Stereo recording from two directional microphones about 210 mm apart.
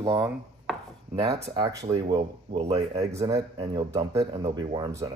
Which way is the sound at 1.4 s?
20° right (ahead or behind).